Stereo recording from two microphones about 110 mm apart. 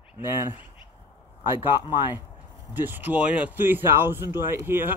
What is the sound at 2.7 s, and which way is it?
A man's voice, 20° right (ahead or behind).